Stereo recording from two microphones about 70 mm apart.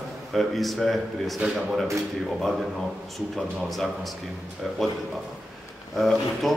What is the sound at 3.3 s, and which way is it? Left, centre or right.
A man's voice, centre.